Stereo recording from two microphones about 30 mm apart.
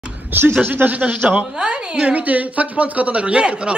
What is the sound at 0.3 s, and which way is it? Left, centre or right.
Speech, right.